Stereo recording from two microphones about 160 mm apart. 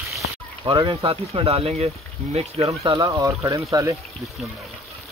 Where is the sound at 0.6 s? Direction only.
30° right (ahead or behind).